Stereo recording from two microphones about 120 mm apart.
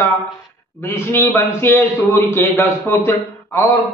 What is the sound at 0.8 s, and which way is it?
A man's voice, 20° left (ahead or behind).